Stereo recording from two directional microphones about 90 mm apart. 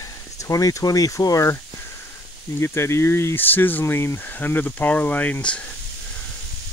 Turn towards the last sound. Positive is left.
turn(degrees=15)  # may be behind; listen again after turning